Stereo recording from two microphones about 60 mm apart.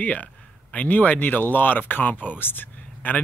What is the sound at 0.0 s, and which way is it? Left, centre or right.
Speech, left.